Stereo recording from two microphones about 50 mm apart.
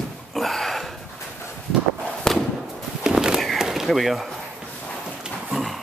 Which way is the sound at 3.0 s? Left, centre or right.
Centre.